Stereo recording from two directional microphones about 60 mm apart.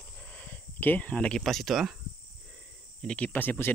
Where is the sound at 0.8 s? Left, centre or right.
Left; by 1.9 s centre.